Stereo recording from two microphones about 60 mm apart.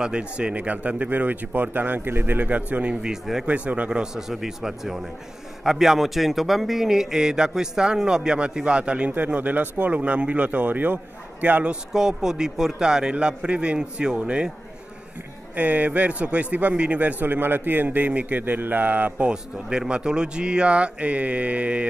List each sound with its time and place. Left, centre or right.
0.0 s a man's voice: centre
3.1 s a man's voice: centre
3.4 s a man's voice: right
4.0 s a man's voice: centre
15.5 s a man's voice: right
19.2 s a man's voice: centre